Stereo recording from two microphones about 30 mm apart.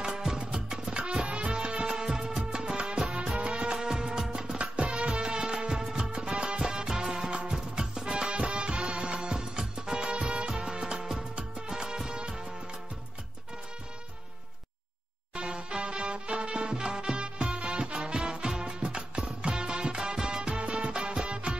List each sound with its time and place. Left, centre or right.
0.0 s music: right
0.9 s music: right
3.7 s music: right
6.3 s music: right
6.6 s music: right
10.0 s music: right
10.5 s music: right
15.3 s music: right